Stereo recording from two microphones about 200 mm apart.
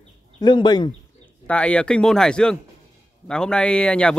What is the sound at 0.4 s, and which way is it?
Speech, 20° left (ahead or behind).